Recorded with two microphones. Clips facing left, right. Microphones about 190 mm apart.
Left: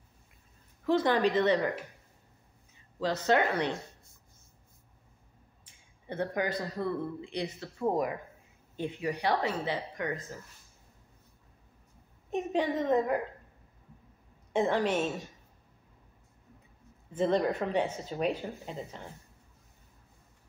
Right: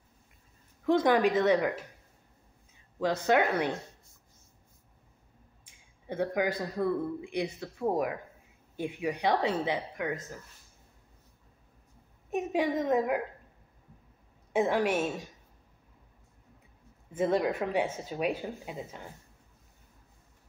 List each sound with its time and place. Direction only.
0.8 s a man's voice: 15° right (ahead or behind)
3.0 s a man's voice: 10° right (ahead or behind)
6.0 s a man's voice: 10° right (ahead or behind)
12.3 s a man's voice: 10° right (ahead or behind)
14.5 s a man's voice: 10° right (ahead or behind)
17.1 s a man's voice: 10° right (ahead or behind)